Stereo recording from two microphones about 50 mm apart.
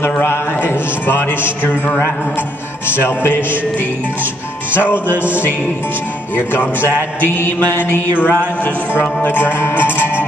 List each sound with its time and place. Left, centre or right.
0.0 s a man's voice: left
2.9 s a man's voice: left
4.7 s music: right
6.3 s a man's voice: left
8.3 s music: left
9.2 s a man's voice: left